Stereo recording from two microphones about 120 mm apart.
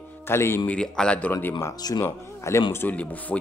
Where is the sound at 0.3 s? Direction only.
20° left (ahead or behind).